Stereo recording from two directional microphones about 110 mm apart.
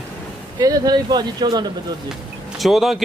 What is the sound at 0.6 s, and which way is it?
Speech, 35° right (ahead or behind).